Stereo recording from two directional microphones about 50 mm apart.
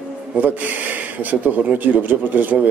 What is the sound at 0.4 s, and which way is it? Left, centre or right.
Speech, right.